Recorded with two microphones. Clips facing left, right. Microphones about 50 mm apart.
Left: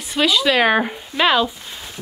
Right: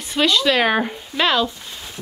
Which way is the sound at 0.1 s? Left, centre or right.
Centre.